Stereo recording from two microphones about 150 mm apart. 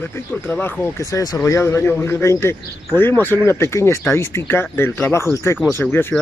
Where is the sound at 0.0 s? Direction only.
15° left (ahead or behind).